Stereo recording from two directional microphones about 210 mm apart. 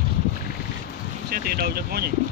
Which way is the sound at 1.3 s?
45° right (ahead or behind).